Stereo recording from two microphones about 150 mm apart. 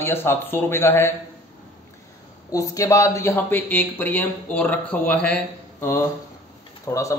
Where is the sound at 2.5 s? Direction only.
20° left (ahead or behind).